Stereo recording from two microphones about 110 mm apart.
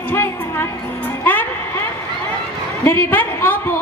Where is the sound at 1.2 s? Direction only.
15° left (ahead or behind).